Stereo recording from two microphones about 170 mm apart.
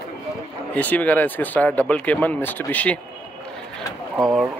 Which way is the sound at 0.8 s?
10° left (ahead or behind).